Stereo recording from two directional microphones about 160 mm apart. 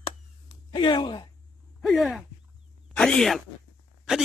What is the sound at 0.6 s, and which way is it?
Speech, 30° left (ahead or behind).